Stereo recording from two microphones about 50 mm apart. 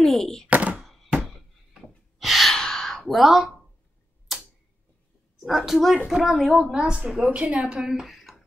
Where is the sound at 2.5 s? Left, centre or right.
Centre.